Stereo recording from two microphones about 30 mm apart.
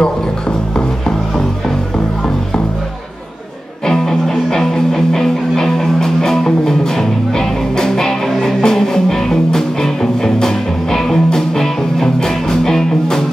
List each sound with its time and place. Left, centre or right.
0.0 s music: left
3.8 s music: centre